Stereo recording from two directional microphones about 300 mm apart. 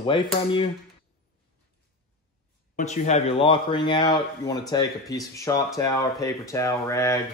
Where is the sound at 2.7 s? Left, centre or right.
Left.